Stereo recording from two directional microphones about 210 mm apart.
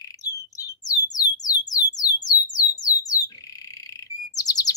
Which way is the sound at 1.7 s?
15° left (ahead or behind).